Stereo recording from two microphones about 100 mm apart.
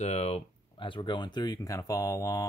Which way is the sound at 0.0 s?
90° left.